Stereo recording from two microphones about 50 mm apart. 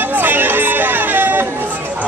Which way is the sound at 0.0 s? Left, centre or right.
Right.